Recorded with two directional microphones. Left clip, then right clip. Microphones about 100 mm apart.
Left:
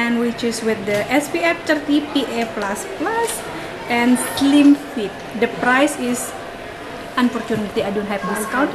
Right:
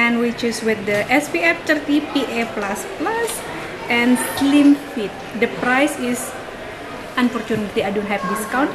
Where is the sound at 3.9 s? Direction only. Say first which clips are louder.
Even; 10° left (ahead or behind).